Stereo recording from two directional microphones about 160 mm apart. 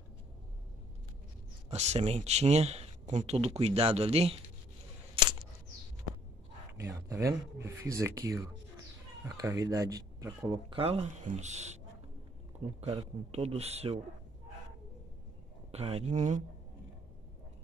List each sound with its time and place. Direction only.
1.7 s speech: 45° right (ahead or behind)
5.1 s a sound: 30° right (ahead or behind)
6.8 s speech: 20° right (ahead or behind)
10.7 s speech: 35° right (ahead or behind)
12.8 s speech: 40° right (ahead or behind)
15.7 s speech: 40° right (ahead or behind)